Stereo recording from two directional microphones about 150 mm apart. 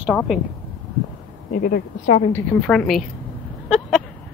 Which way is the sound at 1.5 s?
65° left (ahead or behind).